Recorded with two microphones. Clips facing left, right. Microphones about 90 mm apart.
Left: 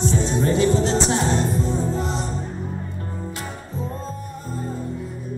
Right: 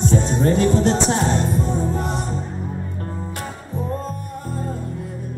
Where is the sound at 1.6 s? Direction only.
50° right (ahead or behind).